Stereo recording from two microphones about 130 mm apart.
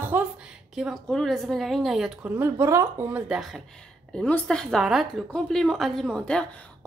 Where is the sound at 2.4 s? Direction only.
20° right (ahead or behind).